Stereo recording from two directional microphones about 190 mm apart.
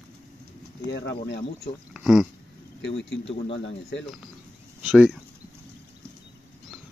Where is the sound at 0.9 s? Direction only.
65° left (ahead or behind).